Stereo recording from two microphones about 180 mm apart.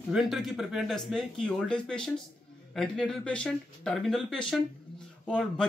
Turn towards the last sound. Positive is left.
turn(degrees=5)  # may be behind; listen again after turning